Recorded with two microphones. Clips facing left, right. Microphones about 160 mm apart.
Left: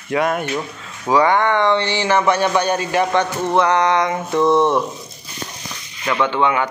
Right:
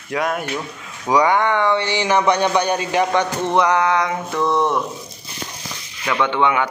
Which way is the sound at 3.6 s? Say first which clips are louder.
Left 1 dB; 10° right (ahead or behind).